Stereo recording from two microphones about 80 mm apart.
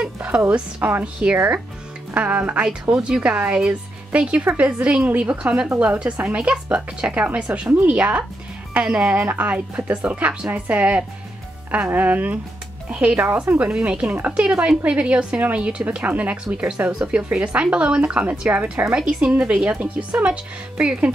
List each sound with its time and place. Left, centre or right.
0.0 s a sound: centre
0.5 s speech: centre
2.9 s speech: centre